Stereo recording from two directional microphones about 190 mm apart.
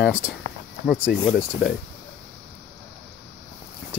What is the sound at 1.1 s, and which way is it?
Speech, centre (ahead or behind).